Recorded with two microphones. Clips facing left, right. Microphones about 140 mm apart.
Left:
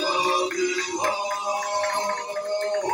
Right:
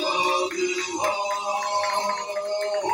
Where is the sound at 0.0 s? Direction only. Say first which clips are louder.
Even; 20° right (ahead or behind).